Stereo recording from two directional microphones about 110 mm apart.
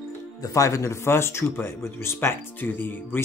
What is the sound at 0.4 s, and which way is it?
Speech, 30° left (ahead or behind).